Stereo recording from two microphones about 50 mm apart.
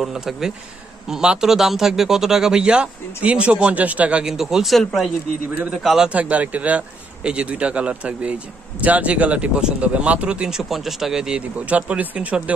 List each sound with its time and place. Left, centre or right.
0.0 s a man's voice: centre; by 4.2 s right
4.2 s speech: centre
6.0 s speech: right
10.5 s speech: centre
11.7 s speech: right